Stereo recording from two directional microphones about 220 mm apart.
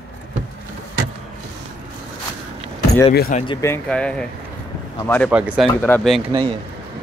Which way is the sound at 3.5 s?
15° left (ahead or behind).